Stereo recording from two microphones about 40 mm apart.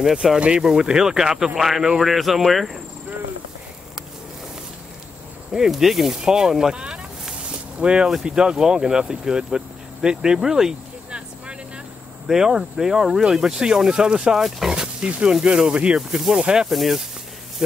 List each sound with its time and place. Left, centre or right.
0.0 s speech: centre
5.5 s speech: centre
11.1 s vehicle: right
12.3 s speech: centre
14.7 s a sound: centre
15.0 s speech: right
16.1 s speech: centre
16.3 s speech: right
16.6 s speech: centre
17.6 s speech: right